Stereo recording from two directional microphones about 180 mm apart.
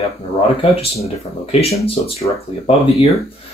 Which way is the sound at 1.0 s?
35° left (ahead or behind).